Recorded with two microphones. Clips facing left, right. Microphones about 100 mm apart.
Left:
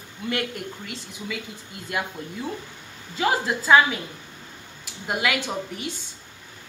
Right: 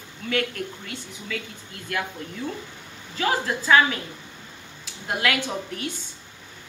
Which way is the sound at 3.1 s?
15° left (ahead or behind).